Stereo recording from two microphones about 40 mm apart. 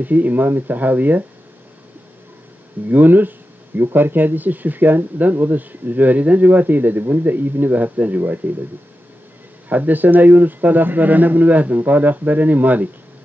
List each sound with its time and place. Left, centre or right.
0.0 s speech: right
2.9 s speech: right
9.7 s speech: right